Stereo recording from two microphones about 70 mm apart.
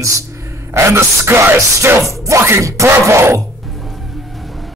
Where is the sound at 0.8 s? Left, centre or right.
Right.